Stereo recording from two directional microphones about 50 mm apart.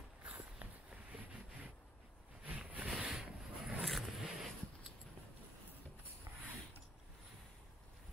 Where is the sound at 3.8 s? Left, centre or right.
Centre.